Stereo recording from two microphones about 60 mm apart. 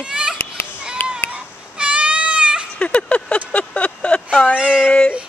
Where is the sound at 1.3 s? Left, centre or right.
Centre.